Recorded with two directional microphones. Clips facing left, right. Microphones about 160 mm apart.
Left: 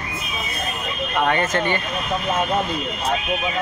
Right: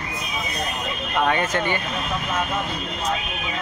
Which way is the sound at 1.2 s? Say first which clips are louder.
Left 1 dB; 10° right (ahead or behind).